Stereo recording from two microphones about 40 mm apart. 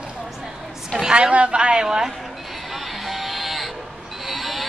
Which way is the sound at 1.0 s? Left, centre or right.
Right.